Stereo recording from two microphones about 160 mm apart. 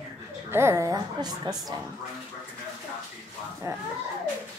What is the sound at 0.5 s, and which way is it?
A woman's voice, 15° right (ahead or behind).